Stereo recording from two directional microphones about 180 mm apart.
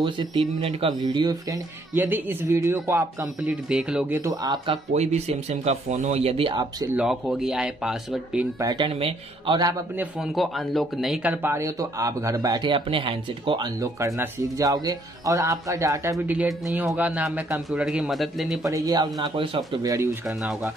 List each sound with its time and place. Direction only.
0.0 s speech: 25° right (ahead or behind)
2.0 s speech: 10° right (ahead or behind)
4.9 s speech: 40° right (ahead or behind)
6.9 s speech: 5° right (ahead or behind)
8.5 s speech: 25° right (ahead or behind)
9.6 s speech: 20° right (ahead or behind)
9.9 s speech: 5° right (ahead or behind)
11.4 s speech: 15° right (ahead or behind); by 18.6 s centre (ahead or behind)
18.6 s speech: 20° right (ahead or behind)
20.2 s speech: 5° right (ahead or behind)